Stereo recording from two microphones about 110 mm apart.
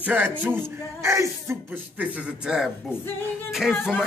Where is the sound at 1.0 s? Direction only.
25° right (ahead or behind).